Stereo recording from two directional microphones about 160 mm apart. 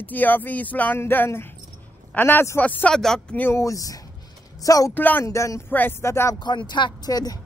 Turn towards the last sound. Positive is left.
turn(degrees=25)  # may be behind; listen again after turning